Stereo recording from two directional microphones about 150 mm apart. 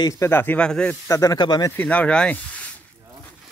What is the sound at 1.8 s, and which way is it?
Speech, 10° left (ahead or behind).